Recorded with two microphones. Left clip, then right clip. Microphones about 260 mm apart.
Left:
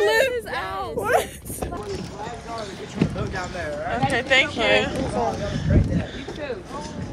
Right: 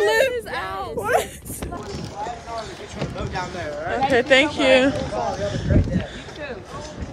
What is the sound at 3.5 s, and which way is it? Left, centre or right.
Speech, right.